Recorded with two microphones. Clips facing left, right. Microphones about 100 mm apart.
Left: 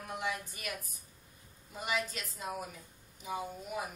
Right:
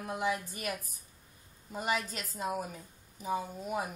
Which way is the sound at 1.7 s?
40° right (ahead or behind).